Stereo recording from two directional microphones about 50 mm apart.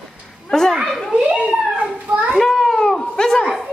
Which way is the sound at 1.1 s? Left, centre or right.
Centre.